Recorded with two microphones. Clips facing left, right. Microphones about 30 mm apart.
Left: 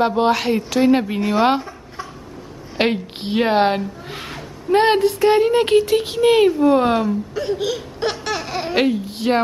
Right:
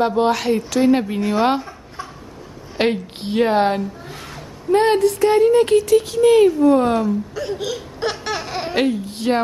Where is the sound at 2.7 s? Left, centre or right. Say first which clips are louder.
Even; centre.